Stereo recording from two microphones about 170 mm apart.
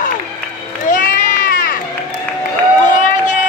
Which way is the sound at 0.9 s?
50° left (ahead or behind).